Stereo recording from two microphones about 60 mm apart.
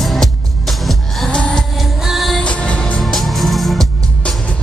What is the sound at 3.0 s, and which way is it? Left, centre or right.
Music, centre.